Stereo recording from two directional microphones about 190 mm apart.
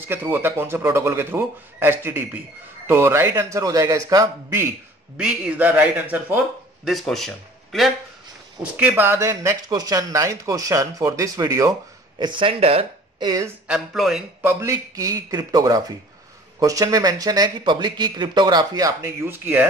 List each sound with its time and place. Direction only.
0.1 s a man's voice: 10° right (ahead or behind); by 13.3 s 30° right (ahead or behind)
13.7 s a man's voice: centre (ahead or behind)
14.4 s speech: 15° right (ahead or behind)